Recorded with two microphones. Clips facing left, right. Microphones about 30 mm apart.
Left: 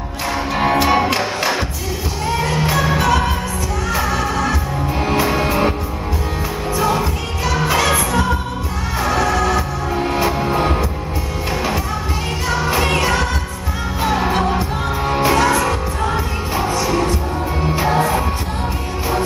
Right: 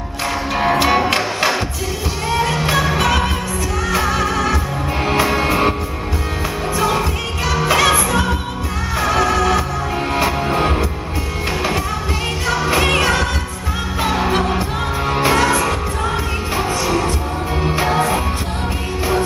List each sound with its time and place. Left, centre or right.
0.8 s music: centre
2.3 s music: centre
6.8 s music: centre
8.1 s singing: centre
9.0 s music: centre
12.4 s music: centre